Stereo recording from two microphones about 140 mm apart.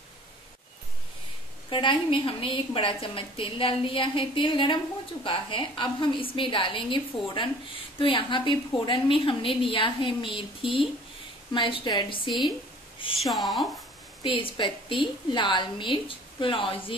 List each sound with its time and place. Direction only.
1.7 s a woman's voice: 35° left (ahead or behind)
13.2 s speech: centre (ahead or behind)
14.2 s a woman's voice: 40° left (ahead or behind)